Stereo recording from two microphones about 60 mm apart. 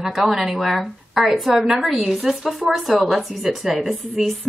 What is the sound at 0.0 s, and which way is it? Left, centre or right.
Speech, centre.